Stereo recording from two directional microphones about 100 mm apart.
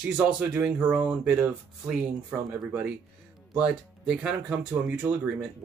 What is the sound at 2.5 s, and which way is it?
Speech, 15° right (ahead or behind).